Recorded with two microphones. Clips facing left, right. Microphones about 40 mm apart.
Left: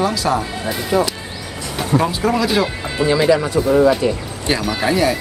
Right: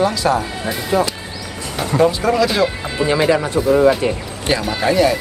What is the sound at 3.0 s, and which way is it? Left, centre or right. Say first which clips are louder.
Speech: left 1 dB; right.